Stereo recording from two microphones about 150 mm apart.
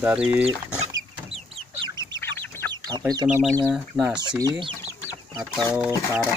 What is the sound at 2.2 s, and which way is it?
Chicken, 15° left (ahead or behind).